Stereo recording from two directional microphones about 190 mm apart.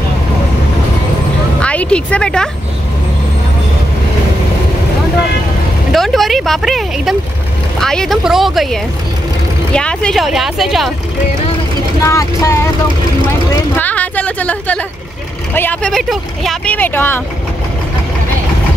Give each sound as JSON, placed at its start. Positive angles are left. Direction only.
{"t": 1.6, "sound": "speech", "side_deg": 5}
{"t": 5.9, "sound": "speech", "side_deg": 0}
{"t": 12.0, "sound": "speech", "side_deg": 15}
{"t": 13.7, "sound": "a woman's voice", "side_deg": 10}